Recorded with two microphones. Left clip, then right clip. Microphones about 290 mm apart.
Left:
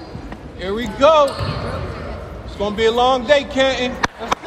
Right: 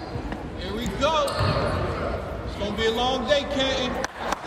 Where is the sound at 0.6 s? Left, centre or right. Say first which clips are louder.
Left 11 dB; centre.